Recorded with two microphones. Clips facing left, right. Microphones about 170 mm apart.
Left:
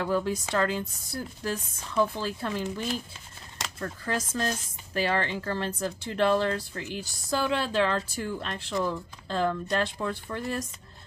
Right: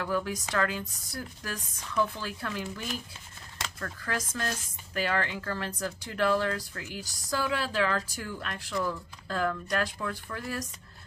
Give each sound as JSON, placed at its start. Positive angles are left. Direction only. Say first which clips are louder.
{"t": 0.0, "sound": "speech", "louder": "left 4 dB", "side_deg": 25}